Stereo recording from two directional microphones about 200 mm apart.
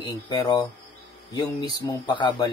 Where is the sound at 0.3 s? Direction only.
20° left (ahead or behind).